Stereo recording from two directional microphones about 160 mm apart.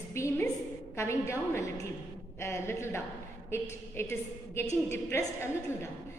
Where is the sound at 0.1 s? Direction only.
15° left (ahead or behind).